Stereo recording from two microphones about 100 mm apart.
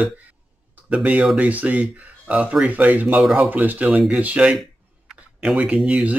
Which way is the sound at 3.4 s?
15° right (ahead or behind).